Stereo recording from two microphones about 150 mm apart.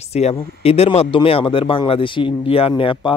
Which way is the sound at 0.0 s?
45° left (ahead or behind).